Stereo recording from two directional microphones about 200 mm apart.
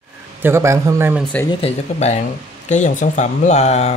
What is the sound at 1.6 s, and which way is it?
Speech, 35° left (ahead or behind).